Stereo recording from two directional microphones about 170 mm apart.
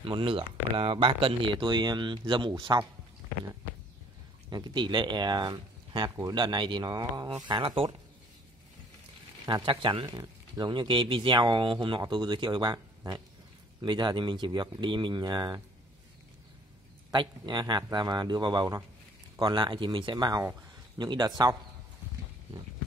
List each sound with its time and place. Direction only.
0.0 s speech: 30° right (ahead or behind)
4.5 s speech: 25° right (ahead or behind)
9.7 s speech: 30° right (ahead or behind)
17.1 s speech: 25° right (ahead or behind)